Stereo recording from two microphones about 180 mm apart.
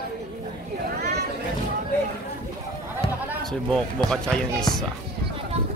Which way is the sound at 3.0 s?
30° left (ahead or behind).